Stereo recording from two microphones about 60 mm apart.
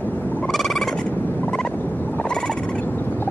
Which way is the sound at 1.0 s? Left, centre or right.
Left.